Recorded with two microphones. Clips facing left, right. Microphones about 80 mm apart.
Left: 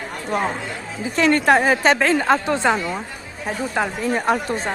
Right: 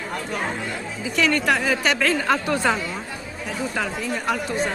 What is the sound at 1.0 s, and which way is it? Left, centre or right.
Speech, left.